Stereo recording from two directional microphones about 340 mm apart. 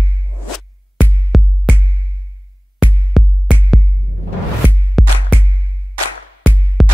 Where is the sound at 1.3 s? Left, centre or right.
Centre.